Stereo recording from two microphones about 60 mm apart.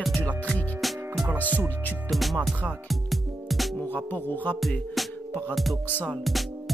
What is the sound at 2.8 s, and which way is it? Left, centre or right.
Music, centre.